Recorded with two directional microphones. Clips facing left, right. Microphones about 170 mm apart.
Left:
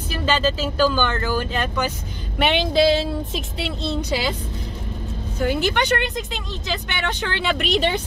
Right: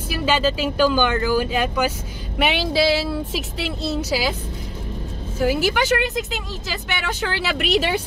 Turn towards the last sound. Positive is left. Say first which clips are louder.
# even
turn(degrees=-5)  # may be behind; listen again after turning